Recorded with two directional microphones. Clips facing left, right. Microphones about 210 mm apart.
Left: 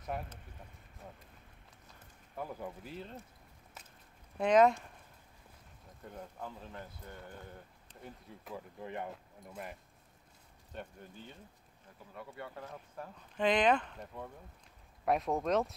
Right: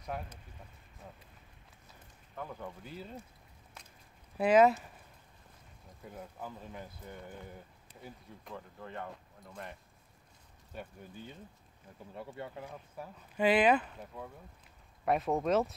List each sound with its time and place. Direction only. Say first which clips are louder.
0.1 s speech: even; centre (ahead or behind)
2.3 s speech: left 1 dB; 10° left (ahead or behind)
3.8 s a sound: even; 5° left (ahead or behind)
4.4 s speech: right 1 dB; 5° right (ahead or behind)
6.0 s speech: right 1 dB; 5° right (ahead or behind)
8.7 s speech: left 3 dB; 15° left (ahead or behind)
9.1 s speech: left 1 dB; 5° left (ahead or behind)
10.7 s speech: right 1 dB; 5° right (ahead or behind)
12.1 s speech: right 3 dB; 30° right (ahead or behind)
12.7 s speech: right 1 dB; 5° right (ahead or behind)